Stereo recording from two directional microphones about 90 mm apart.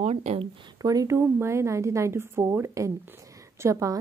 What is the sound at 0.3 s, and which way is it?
Speech, 90° right.